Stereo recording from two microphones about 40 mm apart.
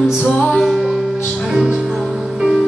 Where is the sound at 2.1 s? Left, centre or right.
Centre.